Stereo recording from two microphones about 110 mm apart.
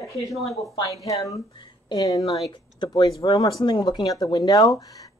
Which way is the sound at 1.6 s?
45° left (ahead or behind).